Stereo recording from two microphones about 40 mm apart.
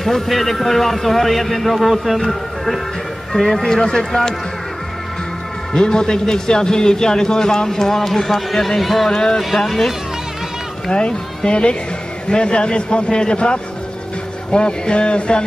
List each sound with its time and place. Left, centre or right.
0.0 s a man's voice: centre
5.7 s a man's voice: centre
9.1 s a man's voice: centre
9.6 s a man's voice: centre
10.9 s speech: left